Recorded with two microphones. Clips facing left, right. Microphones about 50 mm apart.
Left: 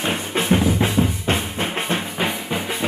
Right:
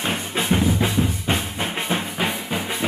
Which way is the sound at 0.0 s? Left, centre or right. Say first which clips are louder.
Left 2 dB; centre.